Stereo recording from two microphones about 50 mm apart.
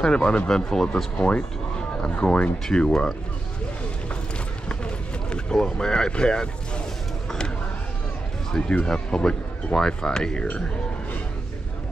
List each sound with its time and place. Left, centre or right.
0.0 s speech: centre
1.1 s speech: left
2.7 s speech: centre
4.6 s run: centre
7.2 s a sound: centre
8.5 s speech: centre